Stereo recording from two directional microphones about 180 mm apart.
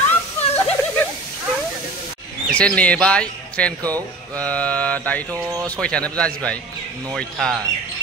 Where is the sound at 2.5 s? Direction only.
5° left (ahead or behind).